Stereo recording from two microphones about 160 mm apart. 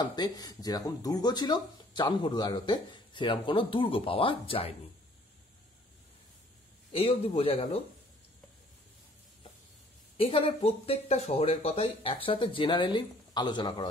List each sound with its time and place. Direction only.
0.1 s speech: 25° left (ahead or behind)
6.9 s speech: 35° left (ahead or behind)
10.1 s speech: 35° left (ahead or behind)